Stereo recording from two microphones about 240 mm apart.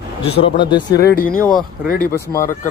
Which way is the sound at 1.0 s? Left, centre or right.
Left.